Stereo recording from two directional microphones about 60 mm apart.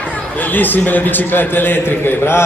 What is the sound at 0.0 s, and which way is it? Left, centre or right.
A man's voice, left.